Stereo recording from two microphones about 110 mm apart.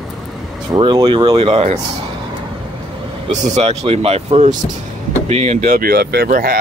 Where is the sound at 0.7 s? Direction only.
45° right (ahead or behind); by 1.7 s 60° right (ahead or behind).